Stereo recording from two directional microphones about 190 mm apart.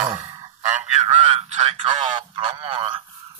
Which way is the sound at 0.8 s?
40° right (ahead or behind).